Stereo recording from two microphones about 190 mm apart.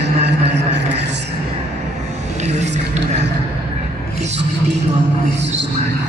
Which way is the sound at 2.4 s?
35° right (ahead or behind).